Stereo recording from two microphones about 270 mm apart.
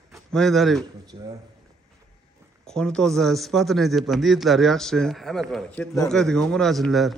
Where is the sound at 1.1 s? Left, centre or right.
Centre.